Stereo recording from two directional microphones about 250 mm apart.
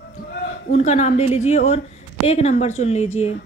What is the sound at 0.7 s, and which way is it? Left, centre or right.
Speech, left.